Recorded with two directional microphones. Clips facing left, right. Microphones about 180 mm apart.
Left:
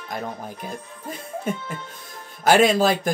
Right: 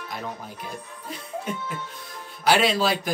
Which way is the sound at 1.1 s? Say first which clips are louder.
Left 3 dB; 45° left (ahead or behind).